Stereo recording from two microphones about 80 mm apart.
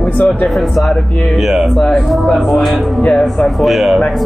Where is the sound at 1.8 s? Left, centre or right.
Centre.